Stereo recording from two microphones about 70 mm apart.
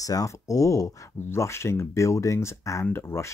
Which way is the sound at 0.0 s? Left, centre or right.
Left.